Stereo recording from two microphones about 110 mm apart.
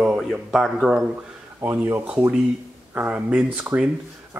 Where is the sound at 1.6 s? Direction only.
20° right (ahead or behind).